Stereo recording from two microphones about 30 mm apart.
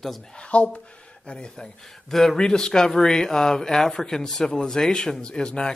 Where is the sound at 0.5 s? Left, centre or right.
Left.